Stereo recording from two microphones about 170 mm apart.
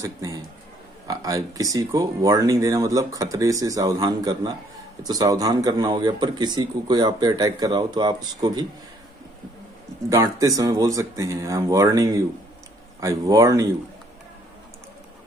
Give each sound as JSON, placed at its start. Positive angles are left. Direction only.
{"t": 0.0, "sound": "speech", "side_deg": -20}
{"t": 10.0, "sound": "speech", "side_deg": -20}